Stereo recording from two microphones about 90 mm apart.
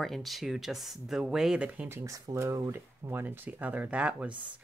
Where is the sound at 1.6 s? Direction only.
20° right (ahead or behind).